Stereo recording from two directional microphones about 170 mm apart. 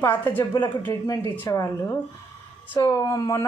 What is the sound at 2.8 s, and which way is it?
Speech, 20° left (ahead or behind).